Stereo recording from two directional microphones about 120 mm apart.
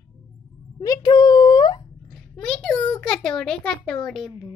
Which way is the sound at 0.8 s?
35° left (ahead or behind).